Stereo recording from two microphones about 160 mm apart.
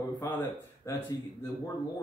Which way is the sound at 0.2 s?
20° left (ahead or behind).